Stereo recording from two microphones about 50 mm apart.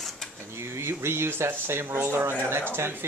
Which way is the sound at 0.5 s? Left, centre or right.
Right.